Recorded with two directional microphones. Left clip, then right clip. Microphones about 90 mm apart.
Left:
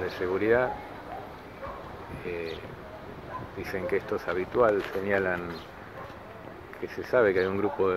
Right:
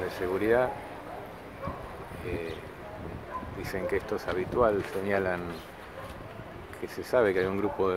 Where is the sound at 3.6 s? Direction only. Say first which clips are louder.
Left 2 dB; 5° right (ahead or behind).